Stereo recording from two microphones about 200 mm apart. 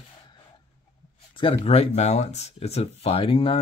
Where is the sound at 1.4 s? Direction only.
30° left (ahead or behind).